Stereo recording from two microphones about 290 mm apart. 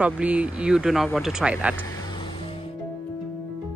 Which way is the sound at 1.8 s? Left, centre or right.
Centre.